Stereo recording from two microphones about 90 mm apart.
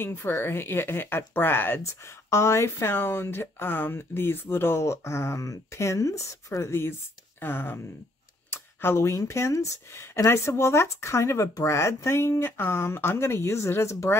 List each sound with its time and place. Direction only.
0.0 s speech: 25° left (ahead or behind)